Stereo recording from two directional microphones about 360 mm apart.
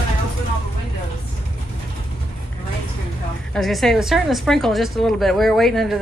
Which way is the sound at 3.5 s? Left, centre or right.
Centre.